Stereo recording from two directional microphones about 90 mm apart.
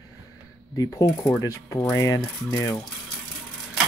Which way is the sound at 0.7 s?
40° left (ahead or behind).